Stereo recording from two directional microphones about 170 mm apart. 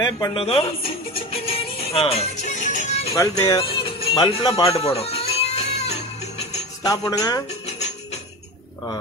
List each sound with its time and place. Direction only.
0.0 s speech: 25° left (ahead or behind)
1.1 s music: 35° left (ahead or behind)
3.2 s music: 20° left (ahead or behind); by 6.6 s 40° left (ahead or behind)
7.1 s speech: 20° left (ahead or behind)